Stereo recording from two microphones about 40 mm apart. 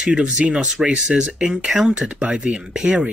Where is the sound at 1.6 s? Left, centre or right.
Centre.